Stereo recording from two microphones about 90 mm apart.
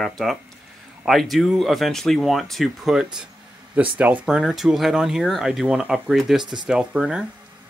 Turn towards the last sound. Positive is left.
turn(degrees=-10)  # may be behind; listen again after turning